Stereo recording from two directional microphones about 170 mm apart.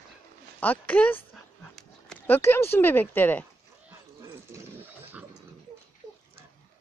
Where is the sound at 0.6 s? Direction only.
10° left (ahead or behind).